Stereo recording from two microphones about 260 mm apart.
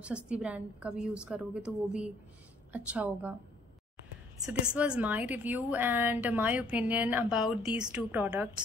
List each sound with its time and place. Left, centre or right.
0.0 s a woman's voice: centre
4.5 s a woman's voice: centre